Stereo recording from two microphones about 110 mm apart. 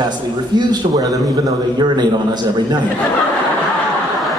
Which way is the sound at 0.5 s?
35° right (ahead or behind).